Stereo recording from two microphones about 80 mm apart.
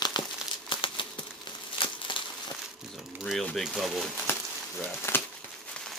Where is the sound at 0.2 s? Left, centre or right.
Left.